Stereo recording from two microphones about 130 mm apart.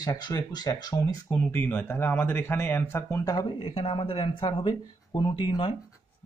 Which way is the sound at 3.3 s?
40° left (ahead or behind).